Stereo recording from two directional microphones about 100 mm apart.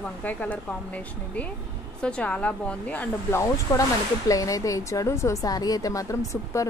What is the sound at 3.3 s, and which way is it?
Speech, 30° left (ahead or behind).